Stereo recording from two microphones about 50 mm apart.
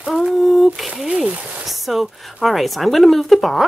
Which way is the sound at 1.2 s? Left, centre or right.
Right.